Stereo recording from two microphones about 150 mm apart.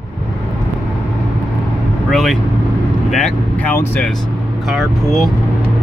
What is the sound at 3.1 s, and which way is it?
Speech, 5° left (ahead or behind).